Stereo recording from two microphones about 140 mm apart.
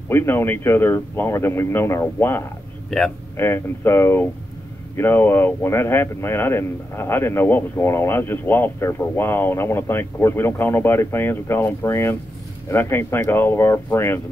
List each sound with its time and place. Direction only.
0.1 s a man's voice: 15° left (ahead or behind)